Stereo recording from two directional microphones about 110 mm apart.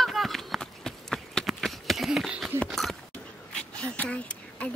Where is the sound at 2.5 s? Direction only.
Centre (ahead or behind).